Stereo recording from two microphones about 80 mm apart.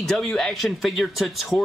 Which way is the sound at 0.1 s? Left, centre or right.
Centre.